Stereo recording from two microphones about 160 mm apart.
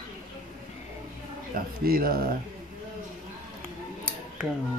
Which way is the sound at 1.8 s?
65° right (ahead or behind).